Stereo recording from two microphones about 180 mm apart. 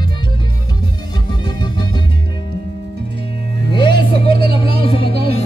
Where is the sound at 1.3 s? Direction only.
25° left (ahead or behind).